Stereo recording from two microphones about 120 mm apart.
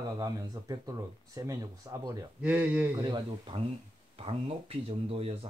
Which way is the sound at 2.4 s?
10° right (ahead or behind).